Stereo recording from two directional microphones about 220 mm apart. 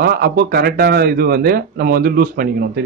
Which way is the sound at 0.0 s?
45° right (ahead or behind).